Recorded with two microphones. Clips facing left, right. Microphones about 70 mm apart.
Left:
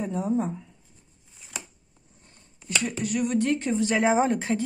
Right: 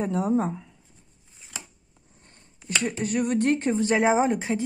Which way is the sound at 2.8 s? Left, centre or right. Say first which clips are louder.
Right 2 dB; right.